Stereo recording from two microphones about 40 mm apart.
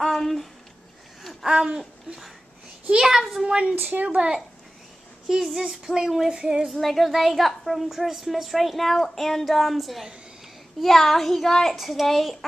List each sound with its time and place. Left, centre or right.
0.0 s a sound: centre
1.4 s a sound: centre
3.0 s speech: centre
3.7 s speech: right
5.3 s speech: centre
6.3 s female singing: right
6.7 s speech: centre